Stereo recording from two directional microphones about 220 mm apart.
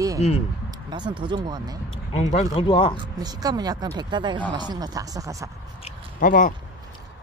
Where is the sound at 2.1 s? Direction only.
25° left (ahead or behind).